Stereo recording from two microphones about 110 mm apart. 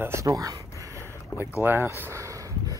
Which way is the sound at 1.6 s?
20° right (ahead or behind).